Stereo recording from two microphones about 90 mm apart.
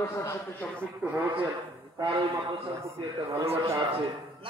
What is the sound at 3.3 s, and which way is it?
Speech, 35° right (ahead or behind).